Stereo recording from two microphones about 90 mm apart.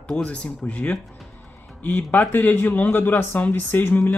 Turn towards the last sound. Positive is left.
turn(degrees=25)  # may be behind; listen again after turning